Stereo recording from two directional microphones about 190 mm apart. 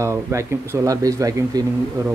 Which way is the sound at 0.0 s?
15° right (ahead or behind).